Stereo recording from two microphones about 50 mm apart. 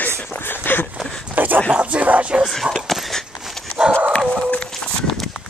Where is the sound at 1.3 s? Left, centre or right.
Right.